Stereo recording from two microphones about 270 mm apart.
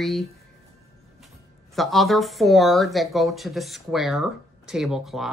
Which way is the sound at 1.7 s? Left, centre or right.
Centre.